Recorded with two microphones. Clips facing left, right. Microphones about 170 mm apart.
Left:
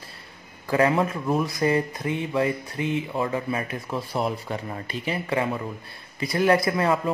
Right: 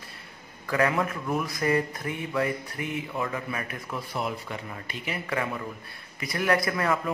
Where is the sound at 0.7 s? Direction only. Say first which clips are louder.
Left 4 dB; 25° left (ahead or behind).